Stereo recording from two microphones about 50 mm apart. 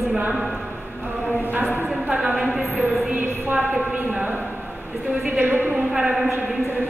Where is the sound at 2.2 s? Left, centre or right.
Right.